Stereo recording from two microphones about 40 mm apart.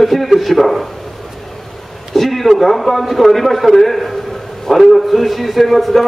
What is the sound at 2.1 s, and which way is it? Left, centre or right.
A man's voice, centre.